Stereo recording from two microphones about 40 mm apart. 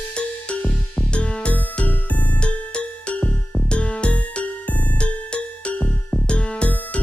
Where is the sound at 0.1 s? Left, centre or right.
Left.